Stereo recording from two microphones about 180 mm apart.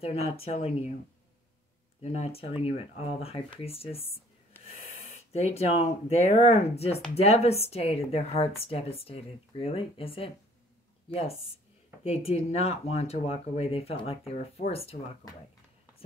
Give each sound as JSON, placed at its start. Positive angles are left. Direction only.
{"t": 0.0, "sound": "a woman's voice", "side_deg": 35}
{"t": 2.0, "sound": "a woman's voice", "side_deg": 35}
{"t": 4.6, "sound": "wheeze", "side_deg": 10}
{"t": 5.3, "sound": "a woman's voice", "side_deg": 35}
{"t": 12.0, "sound": "a woman's voice", "side_deg": 35}